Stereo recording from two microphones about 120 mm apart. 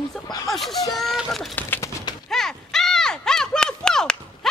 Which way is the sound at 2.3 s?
5° left (ahead or behind).